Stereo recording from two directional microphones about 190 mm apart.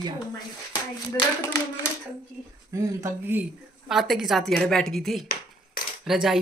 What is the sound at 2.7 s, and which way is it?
Speech, 15° right (ahead or behind).